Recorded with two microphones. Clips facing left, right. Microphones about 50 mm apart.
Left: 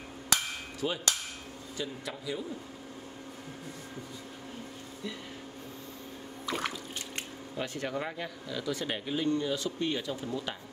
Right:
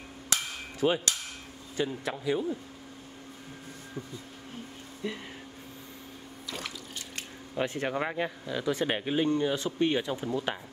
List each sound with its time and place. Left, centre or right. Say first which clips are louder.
0.7 s a man's voice: right 6 dB; right
5.0 s a man's voice: right 5 dB; right
7.5 s speech: right 4 dB; right